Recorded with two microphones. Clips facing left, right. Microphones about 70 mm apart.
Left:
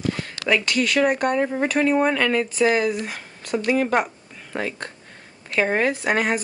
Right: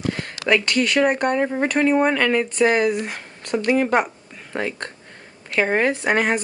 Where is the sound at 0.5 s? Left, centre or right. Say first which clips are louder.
Right 2 dB; centre.